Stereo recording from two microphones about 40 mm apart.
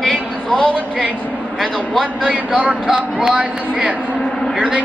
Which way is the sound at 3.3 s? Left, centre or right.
Right.